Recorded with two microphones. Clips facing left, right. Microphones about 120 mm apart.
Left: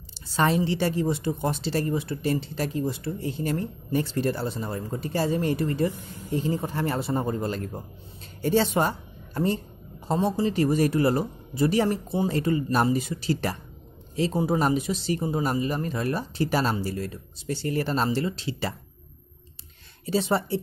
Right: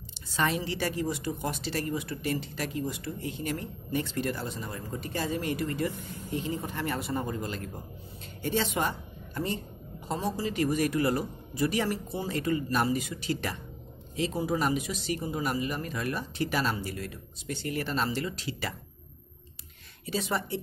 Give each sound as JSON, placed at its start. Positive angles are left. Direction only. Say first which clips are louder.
{"t": 0.6, "sound": "a woman's voice", "louder": "left 6 dB", "side_deg": 30}
{"t": 20.1, "sound": "speech", "louder": "left 7 dB", "side_deg": 30}